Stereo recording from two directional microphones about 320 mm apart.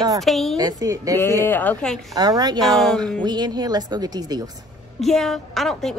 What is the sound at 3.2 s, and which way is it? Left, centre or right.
Speech, centre.